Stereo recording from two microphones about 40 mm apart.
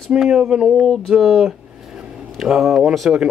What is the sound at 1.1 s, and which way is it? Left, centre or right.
Speech, centre.